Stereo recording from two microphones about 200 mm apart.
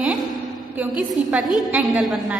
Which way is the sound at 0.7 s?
5° right (ahead or behind).